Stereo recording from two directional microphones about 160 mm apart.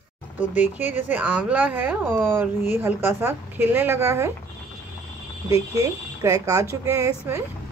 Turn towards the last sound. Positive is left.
turn(degrees=-20)  # may be behind; listen again after turning